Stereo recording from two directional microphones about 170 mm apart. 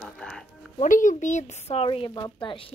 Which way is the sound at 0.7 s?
50° left (ahead or behind).